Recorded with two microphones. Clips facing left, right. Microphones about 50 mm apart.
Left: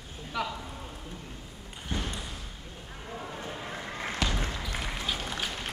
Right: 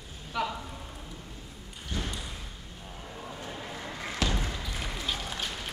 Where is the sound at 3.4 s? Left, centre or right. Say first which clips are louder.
Left 1 dB; left.